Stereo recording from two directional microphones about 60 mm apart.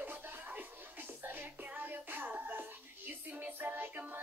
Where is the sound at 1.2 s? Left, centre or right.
Right.